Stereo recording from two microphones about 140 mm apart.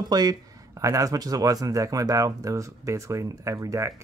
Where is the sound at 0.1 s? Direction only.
25° right (ahead or behind).